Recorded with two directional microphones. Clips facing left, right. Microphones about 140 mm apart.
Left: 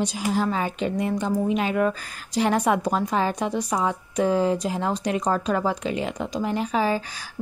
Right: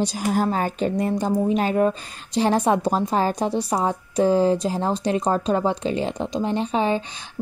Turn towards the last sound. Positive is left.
turn(degrees=-25)  # may be behind; listen again after turning